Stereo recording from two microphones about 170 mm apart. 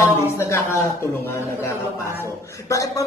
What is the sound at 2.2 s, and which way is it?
Speech, 20° left (ahead or behind).